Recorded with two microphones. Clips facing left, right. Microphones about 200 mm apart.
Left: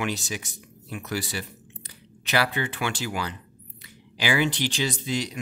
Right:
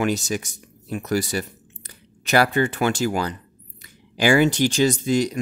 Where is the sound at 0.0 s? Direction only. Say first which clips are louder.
Right 7 dB; 45° right (ahead or behind).